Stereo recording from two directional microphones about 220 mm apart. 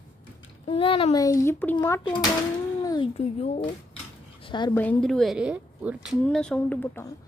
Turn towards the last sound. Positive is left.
turn(degrees=10)  # may be behind; listen again after turning